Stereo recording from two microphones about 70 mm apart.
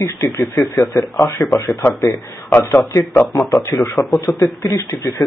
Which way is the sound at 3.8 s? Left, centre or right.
Left.